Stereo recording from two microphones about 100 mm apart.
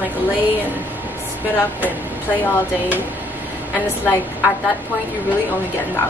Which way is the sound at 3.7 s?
20° left (ahead or behind).